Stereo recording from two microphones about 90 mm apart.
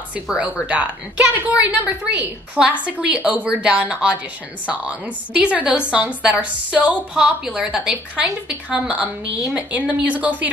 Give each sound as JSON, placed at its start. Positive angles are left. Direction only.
{"t": 0.1, "sound": "a woman's voice", "side_deg": -10}